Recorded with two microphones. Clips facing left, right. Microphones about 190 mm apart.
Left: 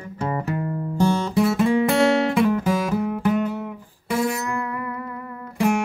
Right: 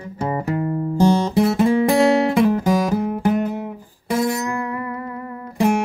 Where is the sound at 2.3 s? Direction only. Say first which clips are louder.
Right 3 dB; 35° right (ahead or behind).